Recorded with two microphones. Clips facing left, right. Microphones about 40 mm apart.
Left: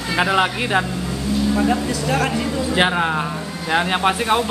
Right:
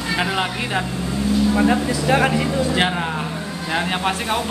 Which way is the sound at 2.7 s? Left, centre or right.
Centre.